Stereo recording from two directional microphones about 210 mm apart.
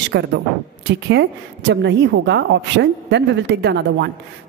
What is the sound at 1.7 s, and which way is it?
A woman's voice, 60° right (ahead or behind).